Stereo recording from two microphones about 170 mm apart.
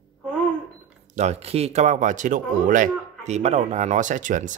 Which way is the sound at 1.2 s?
40° right (ahead or behind).